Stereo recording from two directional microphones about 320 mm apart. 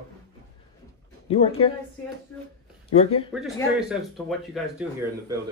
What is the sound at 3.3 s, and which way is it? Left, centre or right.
Speech, centre.